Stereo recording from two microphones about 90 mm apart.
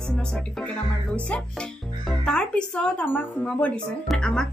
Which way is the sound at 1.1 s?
10° left (ahead or behind).